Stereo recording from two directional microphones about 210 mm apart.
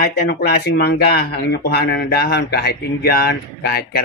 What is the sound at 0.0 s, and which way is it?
Speech, 50° left (ahead or behind).